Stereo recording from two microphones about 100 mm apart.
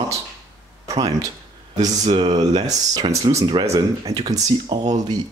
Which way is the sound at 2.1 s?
70° right (ahead or behind).